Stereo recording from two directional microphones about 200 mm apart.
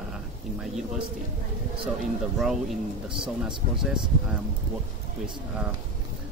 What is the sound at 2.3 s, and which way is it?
Speech, centre (ahead or behind).